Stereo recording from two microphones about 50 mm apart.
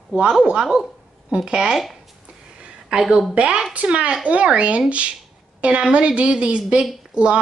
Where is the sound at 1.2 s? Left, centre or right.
Centre.